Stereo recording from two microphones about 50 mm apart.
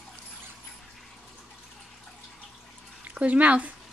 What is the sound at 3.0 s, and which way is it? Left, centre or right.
Speech, right.